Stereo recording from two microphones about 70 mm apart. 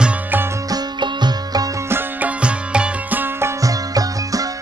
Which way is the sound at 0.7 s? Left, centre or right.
Right.